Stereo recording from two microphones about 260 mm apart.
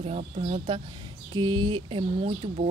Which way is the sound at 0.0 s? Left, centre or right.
Right.